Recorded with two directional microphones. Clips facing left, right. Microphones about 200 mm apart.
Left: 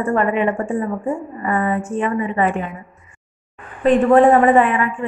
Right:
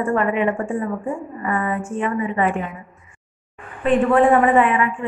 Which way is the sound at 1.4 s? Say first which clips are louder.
Left 3 dB; 35° left (ahead or behind).